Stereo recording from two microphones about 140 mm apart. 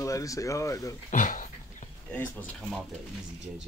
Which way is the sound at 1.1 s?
65° left (ahead or behind).